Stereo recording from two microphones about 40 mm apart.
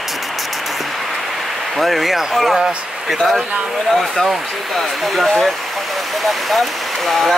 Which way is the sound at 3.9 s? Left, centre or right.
Centre.